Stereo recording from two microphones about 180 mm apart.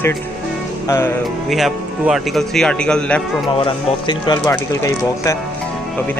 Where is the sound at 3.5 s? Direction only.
25° left (ahead or behind).